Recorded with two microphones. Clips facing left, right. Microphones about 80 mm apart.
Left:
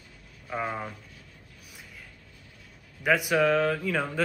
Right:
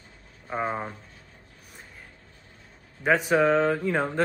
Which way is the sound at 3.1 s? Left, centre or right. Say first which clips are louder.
Right 2 dB; right.